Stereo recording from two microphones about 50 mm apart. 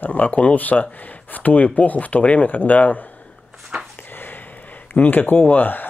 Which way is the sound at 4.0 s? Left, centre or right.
Left.